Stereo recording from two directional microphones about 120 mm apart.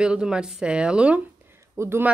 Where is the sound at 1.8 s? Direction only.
20° right (ahead or behind).